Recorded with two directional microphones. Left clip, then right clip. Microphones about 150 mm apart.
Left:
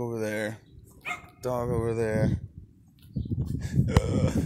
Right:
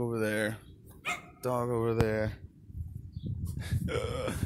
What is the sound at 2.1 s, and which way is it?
Speech, 15° right (ahead or behind).